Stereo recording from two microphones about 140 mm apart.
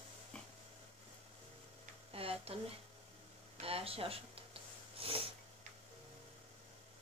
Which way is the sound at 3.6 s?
45° right (ahead or behind).